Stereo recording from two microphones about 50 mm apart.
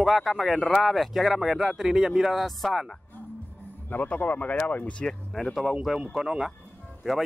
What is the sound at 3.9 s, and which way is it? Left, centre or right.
Speech, left.